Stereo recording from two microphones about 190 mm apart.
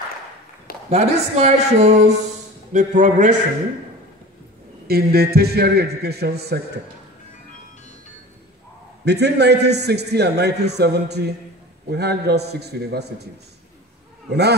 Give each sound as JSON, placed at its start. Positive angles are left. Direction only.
{"t": 0.8, "sound": "speech", "side_deg": -35}
{"t": 4.8, "sound": "a man's voice", "side_deg": -55}
{"t": 9.0, "sound": "a man's voice", "side_deg": -60}